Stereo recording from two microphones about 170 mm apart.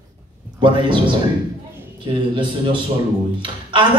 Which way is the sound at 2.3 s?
30° right (ahead or behind).